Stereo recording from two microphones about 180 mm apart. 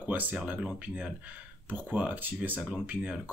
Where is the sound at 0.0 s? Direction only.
10° right (ahead or behind).